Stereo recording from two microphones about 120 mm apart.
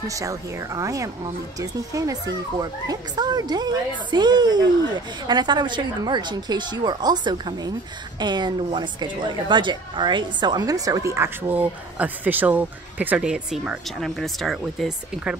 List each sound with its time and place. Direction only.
0.1 s a woman's voice: 25° right (ahead or behind); by 15.3 s centre (ahead or behind)